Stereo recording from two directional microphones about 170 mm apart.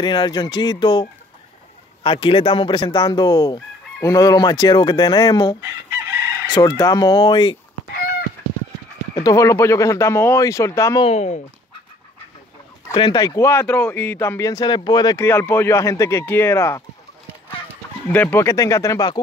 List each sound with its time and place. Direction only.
0.0 s chicken: 25° left (ahead or behind)
2.0 s chicken: 30° left (ahead or behind)
5.6 s chicken: 15° right (ahead or behind)
6.5 s chicken: 20° left (ahead or behind)
9.1 s speech: 20° left (ahead or behind)
11.0 s speech: 40° left (ahead or behind)
12.9 s speech: 25° left (ahead or behind)
18.0 s speech: 10° left (ahead or behind)